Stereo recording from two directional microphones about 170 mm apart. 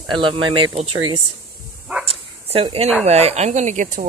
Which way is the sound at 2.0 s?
35° right (ahead or behind).